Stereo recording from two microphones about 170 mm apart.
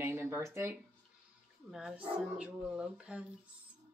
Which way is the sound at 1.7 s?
5° right (ahead or behind).